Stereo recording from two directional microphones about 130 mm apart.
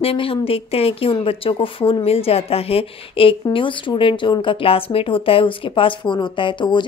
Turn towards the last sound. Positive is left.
turn(degrees=35)  # may be behind; listen again after turning